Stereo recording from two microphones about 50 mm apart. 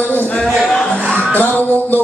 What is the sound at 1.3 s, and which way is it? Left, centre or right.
Music, left.